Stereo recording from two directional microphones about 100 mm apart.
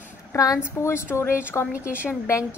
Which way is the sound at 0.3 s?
35° left (ahead or behind).